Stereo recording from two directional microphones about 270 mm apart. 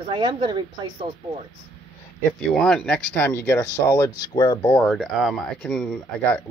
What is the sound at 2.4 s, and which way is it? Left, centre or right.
Speech, centre.